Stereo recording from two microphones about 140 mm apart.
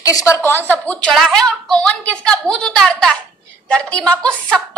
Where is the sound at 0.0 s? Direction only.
25° left (ahead or behind).